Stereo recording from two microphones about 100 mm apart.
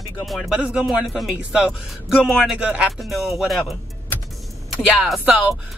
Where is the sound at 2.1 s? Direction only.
10° left (ahead or behind).